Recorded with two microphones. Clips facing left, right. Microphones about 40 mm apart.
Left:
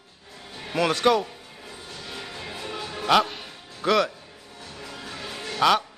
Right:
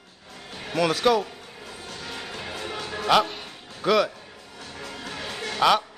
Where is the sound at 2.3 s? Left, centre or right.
Right.